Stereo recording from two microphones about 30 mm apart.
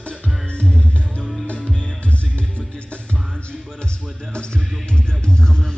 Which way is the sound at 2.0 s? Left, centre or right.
Left.